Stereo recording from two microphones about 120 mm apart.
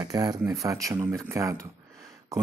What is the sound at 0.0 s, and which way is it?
Speech, 30° right (ahead or behind).